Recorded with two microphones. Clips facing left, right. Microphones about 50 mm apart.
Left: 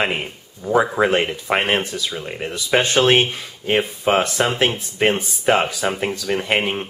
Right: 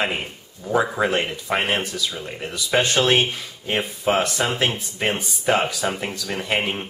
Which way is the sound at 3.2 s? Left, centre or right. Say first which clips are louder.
Left 2 dB; centre.